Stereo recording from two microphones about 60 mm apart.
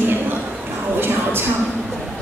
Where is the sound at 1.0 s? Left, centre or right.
Right.